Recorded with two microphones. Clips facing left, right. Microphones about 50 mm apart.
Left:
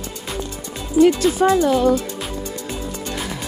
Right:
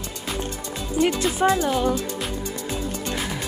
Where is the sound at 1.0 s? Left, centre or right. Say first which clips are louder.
Left 8 dB; right.